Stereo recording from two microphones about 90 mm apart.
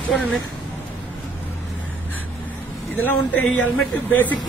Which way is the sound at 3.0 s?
20° left (ahead or behind).